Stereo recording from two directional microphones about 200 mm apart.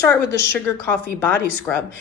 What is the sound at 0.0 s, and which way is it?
A woman's voice, 15° left (ahead or behind).